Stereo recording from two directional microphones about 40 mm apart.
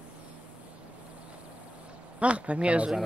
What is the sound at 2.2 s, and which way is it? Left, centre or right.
Speech, right.